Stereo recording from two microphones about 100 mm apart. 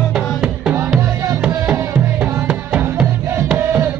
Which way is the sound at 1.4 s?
20° right (ahead or behind).